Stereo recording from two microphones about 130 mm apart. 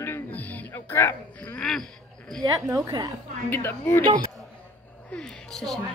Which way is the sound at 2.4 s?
25° right (ahead or behind).